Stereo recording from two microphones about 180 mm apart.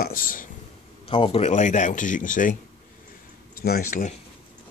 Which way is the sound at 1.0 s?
30° left (ahead or behind).